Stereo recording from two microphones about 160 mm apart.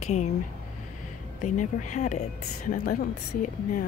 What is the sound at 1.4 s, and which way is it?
Speech, 50° left (ahead or behind).